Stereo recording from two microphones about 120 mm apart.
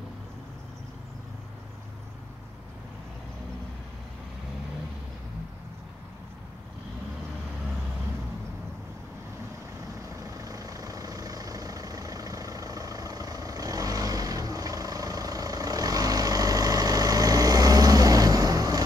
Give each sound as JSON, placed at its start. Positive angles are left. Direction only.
{"t": 10.0, "sound": "vehicle", "side_deg": -30}